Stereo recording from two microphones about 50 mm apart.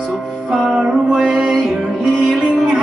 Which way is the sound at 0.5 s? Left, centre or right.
Centre.